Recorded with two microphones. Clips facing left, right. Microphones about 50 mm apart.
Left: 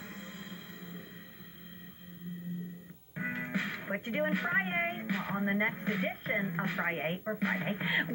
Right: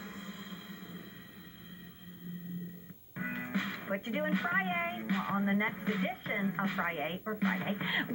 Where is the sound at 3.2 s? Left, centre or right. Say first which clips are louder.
Left 2 dB; left.